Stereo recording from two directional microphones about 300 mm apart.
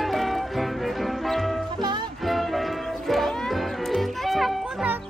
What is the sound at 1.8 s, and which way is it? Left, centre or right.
Music, centre.